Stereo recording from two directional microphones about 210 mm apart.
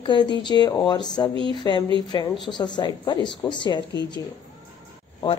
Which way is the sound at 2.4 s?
20° left (ahead or behind).